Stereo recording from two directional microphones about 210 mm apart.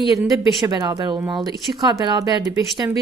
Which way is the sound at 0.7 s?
20° right (ahead or behind).